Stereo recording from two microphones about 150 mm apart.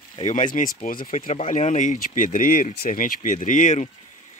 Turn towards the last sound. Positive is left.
turn(degrees=55)  # may be behind; listen again after turning